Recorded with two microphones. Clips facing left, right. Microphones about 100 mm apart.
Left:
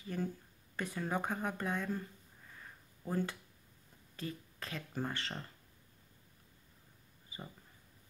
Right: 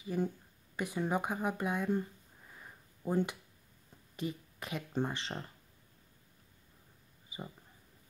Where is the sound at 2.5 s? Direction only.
20° right (ahead or behind).